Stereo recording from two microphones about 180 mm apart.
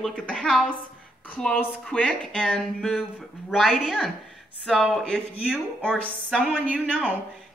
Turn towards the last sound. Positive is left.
turn(degrees=5)  # may be behind; listen again after turning